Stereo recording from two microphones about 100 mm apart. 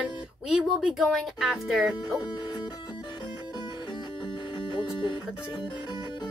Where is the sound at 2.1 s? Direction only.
45° left (ahead or behind).